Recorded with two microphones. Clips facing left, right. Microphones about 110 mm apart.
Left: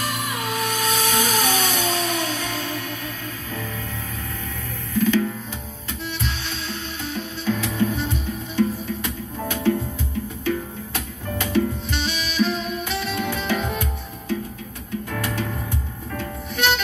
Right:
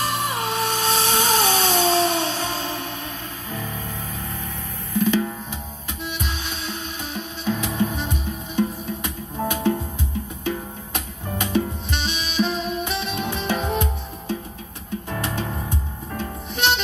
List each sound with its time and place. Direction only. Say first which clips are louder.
0.0 s music: right 3 dB; 30° right (ahead or behind)
4.9 s drum: left 1 dB; 15° right (ahead or behind)
6.0 s music: even; 15° right (ahead or behind)